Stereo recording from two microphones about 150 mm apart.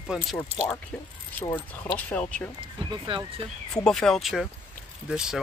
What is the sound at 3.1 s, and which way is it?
Speech, 35° right (ahead or behind).